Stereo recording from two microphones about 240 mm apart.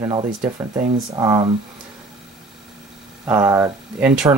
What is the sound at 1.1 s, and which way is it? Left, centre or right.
Speech, centre.